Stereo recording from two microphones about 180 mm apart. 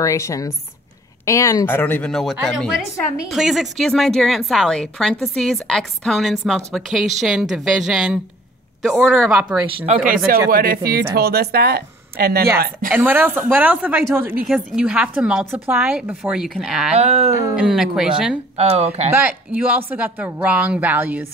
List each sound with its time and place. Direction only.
0.0 s a woman's voice: 15° left (ahead or behind); by 9.6 s 5° right (ahead or behind)
10.0 s a woman's voice: 55° right (ahead or behind)
12.9 s a woman's voice: 10° right (ahead or behind)
16.9 s speech: 35° right (ahead or behind)
17.6 s a woman's voice: 5° right (ahead or behind)
18.6 s speech: 35° right (ahead or behind)
19.5 s speech: 10° right (ahead or behind)